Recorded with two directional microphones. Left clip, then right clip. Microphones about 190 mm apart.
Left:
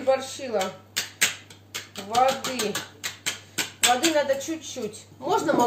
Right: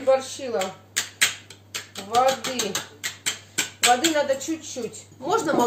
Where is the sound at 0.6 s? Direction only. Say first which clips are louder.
Right 1 dB; centre (ahead or behind).